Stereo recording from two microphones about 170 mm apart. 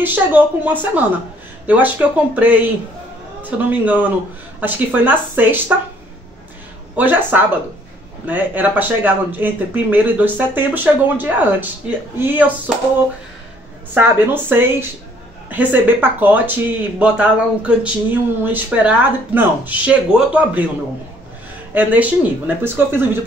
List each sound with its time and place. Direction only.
0.0 s speech: 10° right (ahead or behind)
7.0 s speech: 10° right (ahead or behind)
13.9 s speech: 10° right (ahead or behind)
21.7 s speech: 10° right (ahead or behind)